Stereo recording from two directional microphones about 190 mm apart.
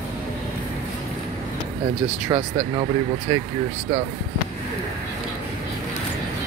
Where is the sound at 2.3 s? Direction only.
30° right (ahead or behind).